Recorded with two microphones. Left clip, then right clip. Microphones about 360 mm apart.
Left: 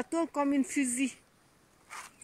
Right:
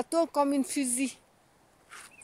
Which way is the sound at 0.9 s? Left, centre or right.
Right.